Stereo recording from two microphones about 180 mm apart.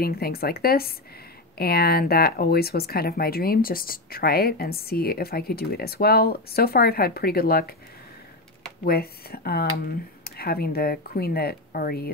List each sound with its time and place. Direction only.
0.0 s speech: 60° left (ahead or behind)
8.8 s speech: 60° left (ahead or behind)